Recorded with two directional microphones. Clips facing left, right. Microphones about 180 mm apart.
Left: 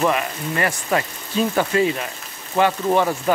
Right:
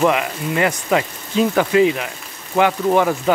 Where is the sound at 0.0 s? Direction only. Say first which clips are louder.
Right 3 dB; 15° right (ahead or behind).